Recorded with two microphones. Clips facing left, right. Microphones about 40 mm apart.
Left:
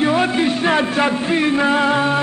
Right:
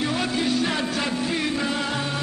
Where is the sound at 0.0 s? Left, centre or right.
Left.